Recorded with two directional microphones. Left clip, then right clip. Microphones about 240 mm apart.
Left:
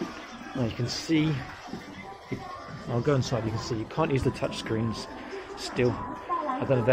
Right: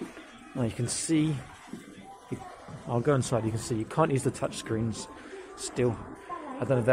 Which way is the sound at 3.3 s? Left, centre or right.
Right.